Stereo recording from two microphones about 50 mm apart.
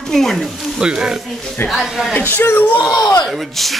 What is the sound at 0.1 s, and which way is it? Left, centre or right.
Speech, centre.